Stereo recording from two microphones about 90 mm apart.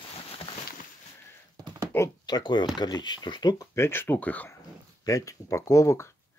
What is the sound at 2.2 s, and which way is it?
Speech, 50° left (ahead or behind).